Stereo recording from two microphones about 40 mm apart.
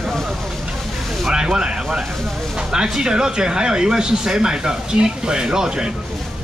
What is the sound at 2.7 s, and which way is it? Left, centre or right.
Speech, centre.